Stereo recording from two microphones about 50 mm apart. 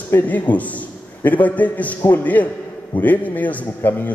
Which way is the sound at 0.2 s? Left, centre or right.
Left.